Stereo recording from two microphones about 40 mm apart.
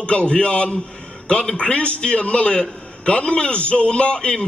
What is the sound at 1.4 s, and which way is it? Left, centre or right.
Speech, centre.